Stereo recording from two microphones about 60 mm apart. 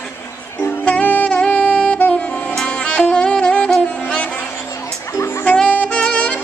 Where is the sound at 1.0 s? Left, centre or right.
Left.